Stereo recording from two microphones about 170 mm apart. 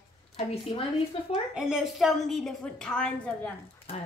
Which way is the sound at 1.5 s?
5° right (ahead or behind).